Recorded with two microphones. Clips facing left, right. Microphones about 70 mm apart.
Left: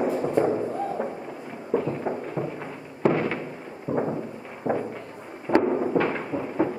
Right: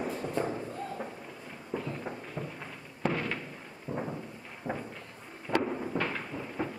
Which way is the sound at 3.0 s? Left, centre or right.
Centre.